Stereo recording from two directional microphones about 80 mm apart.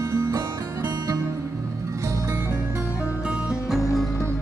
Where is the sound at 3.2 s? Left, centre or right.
Centre.